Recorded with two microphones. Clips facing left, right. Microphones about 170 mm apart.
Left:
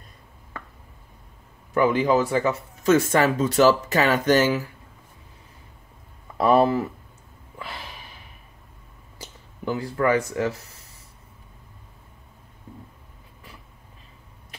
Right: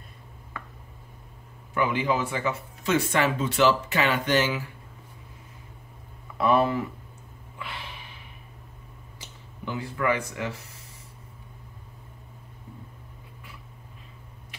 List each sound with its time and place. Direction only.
1.7 s speech: 40° left (ahead or behind)
6.3 s speech: 35° left (ahead or behind)
7.5 s snort: 40° left (ahead or behind)
9.2 s speech: 40° left (ahead or behind)